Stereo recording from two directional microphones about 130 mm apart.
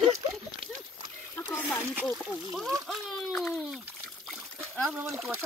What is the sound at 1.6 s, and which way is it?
Speech, centre (ahead or behind).